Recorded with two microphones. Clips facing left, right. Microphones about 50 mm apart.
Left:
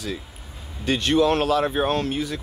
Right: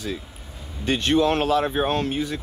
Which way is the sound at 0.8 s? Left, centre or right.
Right.